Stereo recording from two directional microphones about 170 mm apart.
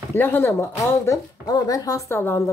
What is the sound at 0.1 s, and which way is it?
Speech, 10° left (ahead or behind).